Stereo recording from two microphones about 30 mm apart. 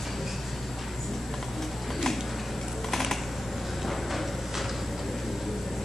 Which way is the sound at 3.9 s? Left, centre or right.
Centre.